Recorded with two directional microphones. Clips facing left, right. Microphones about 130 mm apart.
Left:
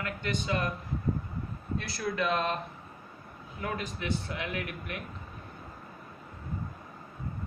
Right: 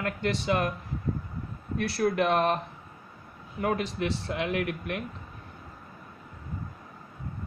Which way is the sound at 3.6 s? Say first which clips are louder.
Right 7 dB; 65° right (ahead or behind).